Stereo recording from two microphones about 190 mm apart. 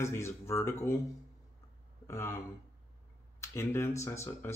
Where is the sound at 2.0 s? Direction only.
15° left (ahead or behind).